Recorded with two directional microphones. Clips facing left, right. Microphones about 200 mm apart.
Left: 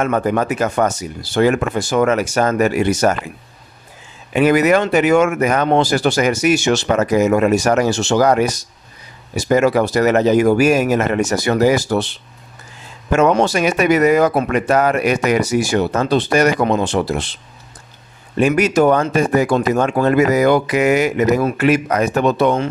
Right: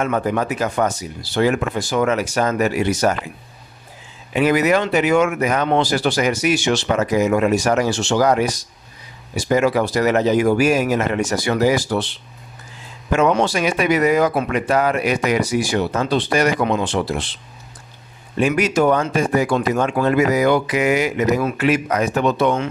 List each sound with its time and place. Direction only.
0.0 s speech: 50° left (ahead or behind)
4.3 s speech: 50° left (ahead or behind)
9.5 s speech: 45° left (ahead or behind)
13.1 s speech: 45° left (ahead or behind)
18.4 s speech: 45° left (ahead or behind)